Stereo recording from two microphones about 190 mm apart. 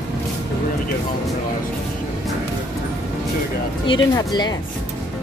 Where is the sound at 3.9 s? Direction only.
20° left (ahead or behind).